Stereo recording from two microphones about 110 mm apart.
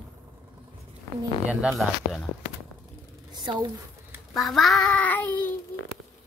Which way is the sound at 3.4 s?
45° right (ahead or behind).